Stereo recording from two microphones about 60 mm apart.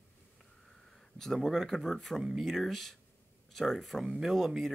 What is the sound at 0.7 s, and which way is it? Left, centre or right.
Speech, centre.